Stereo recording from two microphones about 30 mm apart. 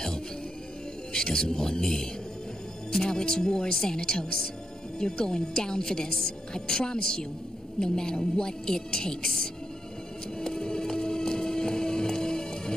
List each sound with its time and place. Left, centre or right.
1.1 s a woman's voice: left
10.4 s music: left